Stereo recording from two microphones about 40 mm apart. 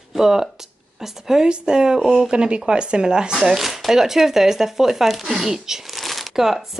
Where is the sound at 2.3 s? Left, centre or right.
Right.